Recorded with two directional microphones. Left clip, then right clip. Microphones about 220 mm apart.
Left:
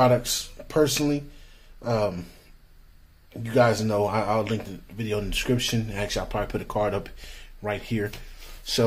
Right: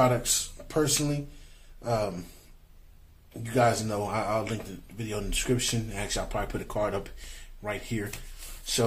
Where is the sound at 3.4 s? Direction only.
45° left (ahead or behind).